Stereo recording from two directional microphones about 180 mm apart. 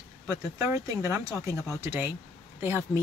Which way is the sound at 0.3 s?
15° right (ahead or behind).